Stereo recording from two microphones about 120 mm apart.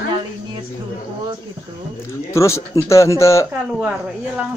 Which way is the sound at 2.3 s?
25° left (ahead or behind).